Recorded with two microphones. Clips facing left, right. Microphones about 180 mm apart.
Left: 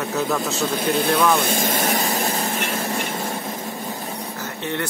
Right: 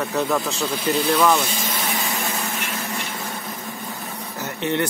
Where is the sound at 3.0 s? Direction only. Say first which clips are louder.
Left 5 dB; 45° left (ahead or behind).